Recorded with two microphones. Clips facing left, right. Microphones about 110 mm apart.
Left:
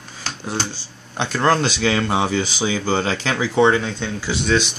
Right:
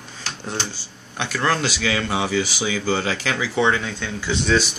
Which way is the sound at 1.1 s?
25° left (ahead or behind).